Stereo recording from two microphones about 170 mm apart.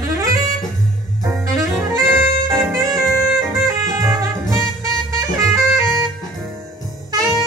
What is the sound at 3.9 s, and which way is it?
Music, 20° right (ahead or behind).